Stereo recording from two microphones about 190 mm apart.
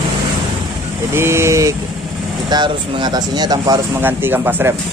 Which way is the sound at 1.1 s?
15° right (ahead or behind).